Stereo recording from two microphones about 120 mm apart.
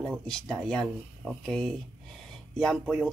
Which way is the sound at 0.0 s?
5° left (ahead or behind).